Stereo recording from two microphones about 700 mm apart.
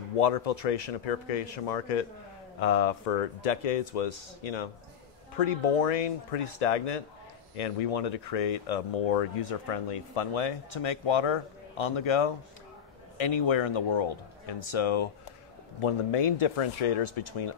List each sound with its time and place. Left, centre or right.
0.2 s speech: left
2.6 s speech: left
5.4 s a man's voice: left